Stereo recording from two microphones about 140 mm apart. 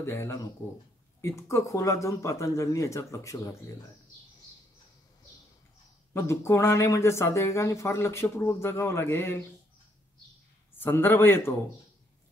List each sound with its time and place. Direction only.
0.0 s speech: 20° left (ahead or behind)
1.5 s speech: 20° left (ahead or behind)
6.1 s speech: 20° left (ahead or behind)
10.8 s a man's voice: 15° left (ahead or behind)